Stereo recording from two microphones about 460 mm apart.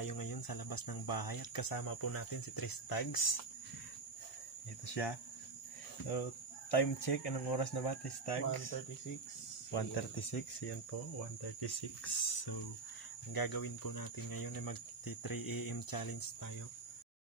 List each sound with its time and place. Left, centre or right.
0.0 s speech: left
4.8 s speech: left
6.7 s speech: left
9.7 s speech: left
11.6 s speech: left